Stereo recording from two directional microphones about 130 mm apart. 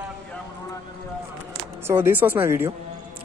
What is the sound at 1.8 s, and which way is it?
Speech, 20° right (ahead or behind).